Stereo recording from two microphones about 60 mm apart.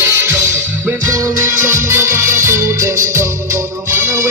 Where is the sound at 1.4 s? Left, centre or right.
Right.